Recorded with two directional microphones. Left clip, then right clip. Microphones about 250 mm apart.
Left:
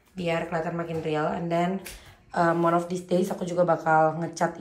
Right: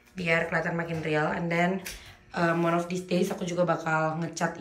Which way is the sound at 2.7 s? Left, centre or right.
Centre.